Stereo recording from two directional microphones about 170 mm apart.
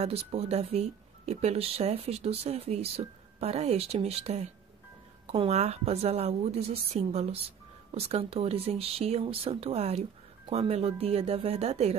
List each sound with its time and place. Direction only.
0.0 s speech: 35° right (ahead or behind)